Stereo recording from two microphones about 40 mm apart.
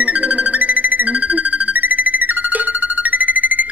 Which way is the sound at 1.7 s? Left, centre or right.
Right.